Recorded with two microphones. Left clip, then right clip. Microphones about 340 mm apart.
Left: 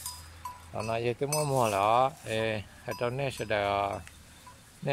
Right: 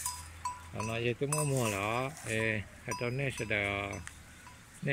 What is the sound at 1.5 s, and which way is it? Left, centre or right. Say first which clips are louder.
Speech: left 12 dB; centre.